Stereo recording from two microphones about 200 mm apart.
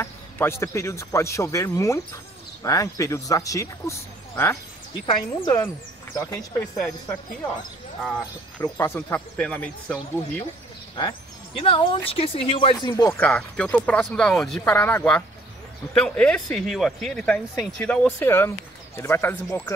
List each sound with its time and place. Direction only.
0.0 s speech: 10° left (ahead or behind)
5.0 s speech: 25° left (ahead or behind)
8.5 s speech: 10° left (ahead or behind)
11.0 s speech: 25° left (ahead or behind)
13.2 s speech: 5° left (ahead or behind)